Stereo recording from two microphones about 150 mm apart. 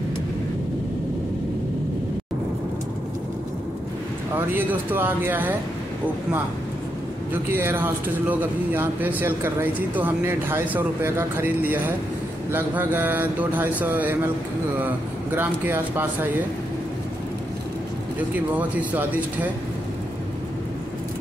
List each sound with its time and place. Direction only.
4.4 s speech: 15° right (ahead or behind)
7.5 s speech: 15° right (ahead or behind)
18.5 s speech: 10° right (ahead or behind)